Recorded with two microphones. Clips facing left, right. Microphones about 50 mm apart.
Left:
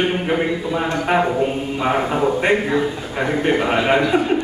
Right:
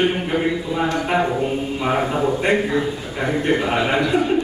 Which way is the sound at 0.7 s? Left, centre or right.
Left.